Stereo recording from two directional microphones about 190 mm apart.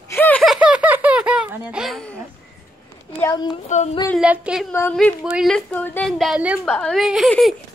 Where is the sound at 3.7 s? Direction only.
40° left (ahead or behind).